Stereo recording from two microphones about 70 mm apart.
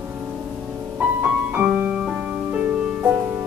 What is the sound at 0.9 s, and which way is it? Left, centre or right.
Music, right.